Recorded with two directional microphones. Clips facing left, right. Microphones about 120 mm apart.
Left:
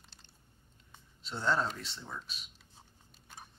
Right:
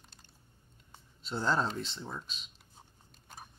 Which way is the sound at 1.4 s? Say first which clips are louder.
Even; 30° right (ahead or behind).